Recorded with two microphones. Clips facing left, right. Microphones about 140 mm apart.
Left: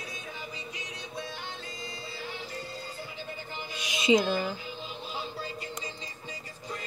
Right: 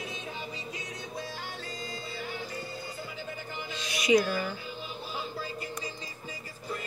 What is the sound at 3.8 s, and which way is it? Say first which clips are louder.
Music: even; 20° left (ahead or behind).